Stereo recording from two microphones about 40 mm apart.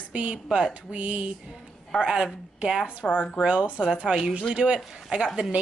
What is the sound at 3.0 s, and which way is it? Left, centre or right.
Speech, left.